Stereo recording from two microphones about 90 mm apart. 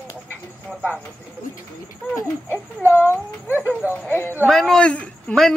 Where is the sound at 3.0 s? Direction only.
20° right (ahead or behind).